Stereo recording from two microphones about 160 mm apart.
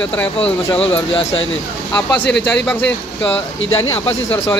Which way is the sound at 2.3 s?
90° left.